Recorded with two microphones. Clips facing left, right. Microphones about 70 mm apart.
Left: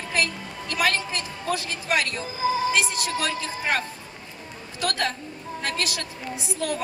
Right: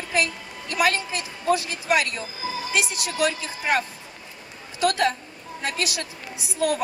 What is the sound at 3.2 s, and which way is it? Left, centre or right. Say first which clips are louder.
A woman's voice: right 3 dB; centre.